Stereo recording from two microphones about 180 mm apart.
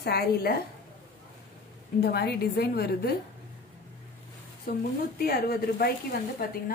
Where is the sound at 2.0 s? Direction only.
60° left (ahead or behind).